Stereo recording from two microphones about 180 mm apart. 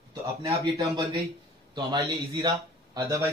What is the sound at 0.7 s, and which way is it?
A man's voice, 20° right (ahead or behind).